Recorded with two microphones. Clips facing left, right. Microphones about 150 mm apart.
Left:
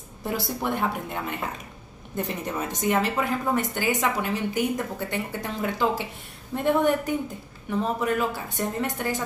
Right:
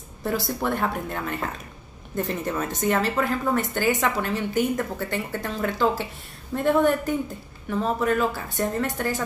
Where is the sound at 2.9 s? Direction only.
15° left (ahead or behind).